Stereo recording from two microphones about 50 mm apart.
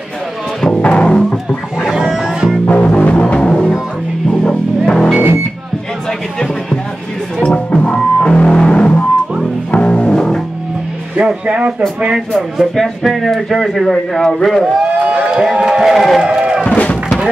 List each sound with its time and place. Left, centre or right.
0.7 s music: left
1.8 s music: centre
2.6 s music: left
6.0 s music: centre
11.1 s music: right
12.3 s speech: centre
12.7 s a man's voice: centre
16.2 s a sound: centre
16.6 s slam: left